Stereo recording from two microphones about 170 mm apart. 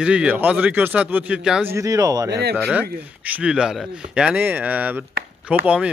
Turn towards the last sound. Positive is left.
turn(degrees=-5)  # may be behind; listen again after turning